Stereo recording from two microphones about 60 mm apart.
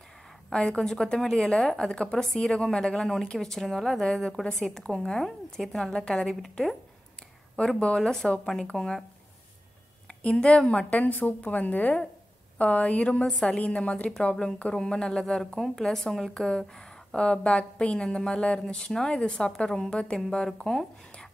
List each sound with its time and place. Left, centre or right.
0.5 s a woman's voice: centre
5.2 s a woman's voice: centre
5.8 s a woman's voice: centre
10.0 s a woman's voice: centre